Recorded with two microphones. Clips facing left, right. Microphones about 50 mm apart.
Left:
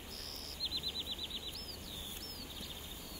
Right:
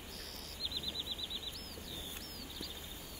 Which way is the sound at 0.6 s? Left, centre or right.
Left.